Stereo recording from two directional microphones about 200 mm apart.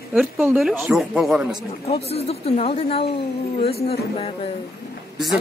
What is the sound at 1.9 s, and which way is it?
Speech, 30° left (ahead or behind).